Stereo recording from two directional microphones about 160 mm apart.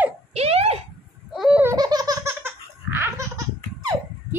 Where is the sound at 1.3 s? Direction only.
5° right (ahead or behind).